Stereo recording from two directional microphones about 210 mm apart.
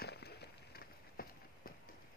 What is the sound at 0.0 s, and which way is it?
Run, 50° left (ahead or behind).